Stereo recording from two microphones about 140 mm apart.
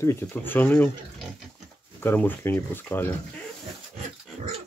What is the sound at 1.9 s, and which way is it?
Speech, 15° left (ahead or behind).